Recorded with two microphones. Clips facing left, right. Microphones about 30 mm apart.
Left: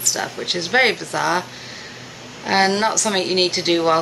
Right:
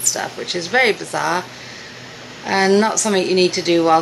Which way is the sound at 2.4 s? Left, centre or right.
Centre.